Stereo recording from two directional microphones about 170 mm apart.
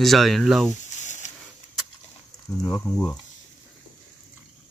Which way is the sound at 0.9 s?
45° left (ahead or behind).